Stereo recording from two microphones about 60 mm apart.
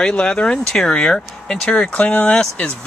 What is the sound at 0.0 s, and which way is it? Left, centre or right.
Speech, centre.